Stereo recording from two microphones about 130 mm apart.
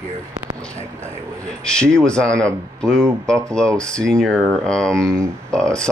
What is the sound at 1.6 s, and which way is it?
Speech, 5° left (ahead or behind).